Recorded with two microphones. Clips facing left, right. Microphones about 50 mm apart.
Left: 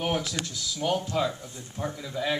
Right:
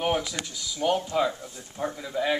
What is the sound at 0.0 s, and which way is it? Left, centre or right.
Speech, centre.